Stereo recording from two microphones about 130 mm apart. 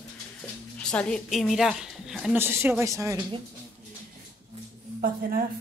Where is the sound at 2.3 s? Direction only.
15° right (ahead or behind).